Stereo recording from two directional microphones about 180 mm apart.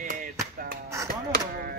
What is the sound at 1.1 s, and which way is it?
Chop, 55° right (ahead or behind).